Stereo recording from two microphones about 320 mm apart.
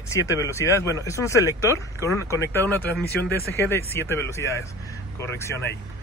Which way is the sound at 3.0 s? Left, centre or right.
Left.